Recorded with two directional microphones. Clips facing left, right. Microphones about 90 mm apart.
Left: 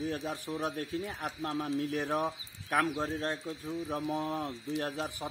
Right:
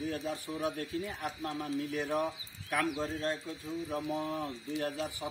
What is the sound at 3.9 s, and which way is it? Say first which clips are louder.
A man's voice: left 1 dB; 40° left (ahead or behind).